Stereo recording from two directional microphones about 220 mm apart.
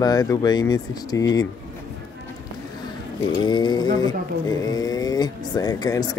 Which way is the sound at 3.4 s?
20° left (ahead or behind).